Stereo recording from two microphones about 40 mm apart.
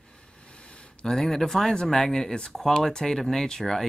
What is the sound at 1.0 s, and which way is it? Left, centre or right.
Speech, centre.